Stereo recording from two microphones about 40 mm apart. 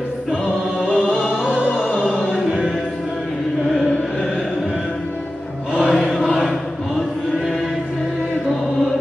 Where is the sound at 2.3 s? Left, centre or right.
Centre.